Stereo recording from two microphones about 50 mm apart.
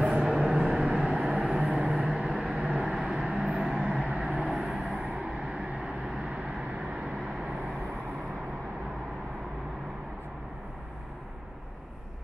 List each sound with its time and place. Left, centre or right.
0.0 s vehicle: centre
2.8 s vehicle: centre
3.3 s vehicle: right
3.6 s vehicle: centre